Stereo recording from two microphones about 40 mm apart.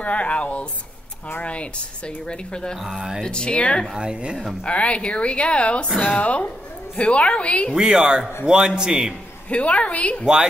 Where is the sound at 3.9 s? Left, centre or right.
Right.